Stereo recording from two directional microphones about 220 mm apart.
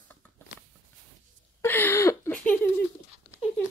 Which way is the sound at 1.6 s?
10° left (ahead or behind).